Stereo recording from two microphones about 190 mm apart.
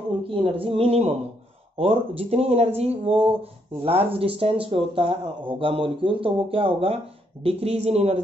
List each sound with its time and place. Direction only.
0.2 s speech: 30° right (ahead or behind)